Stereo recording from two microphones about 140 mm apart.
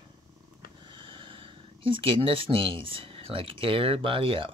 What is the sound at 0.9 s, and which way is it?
Speech, 40° right (ahead or behind).